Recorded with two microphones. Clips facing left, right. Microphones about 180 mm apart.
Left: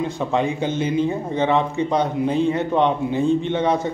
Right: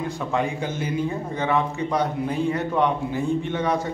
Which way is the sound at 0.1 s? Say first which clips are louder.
Left 4 dB; 25° left (ahead or behind).